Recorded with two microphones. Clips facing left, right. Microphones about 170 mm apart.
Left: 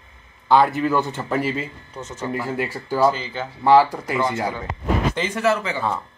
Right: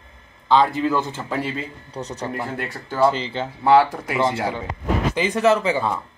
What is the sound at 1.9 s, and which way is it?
Speech, 35° right (ahead or behind).